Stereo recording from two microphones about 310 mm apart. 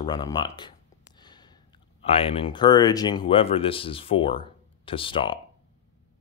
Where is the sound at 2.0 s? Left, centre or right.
Centre.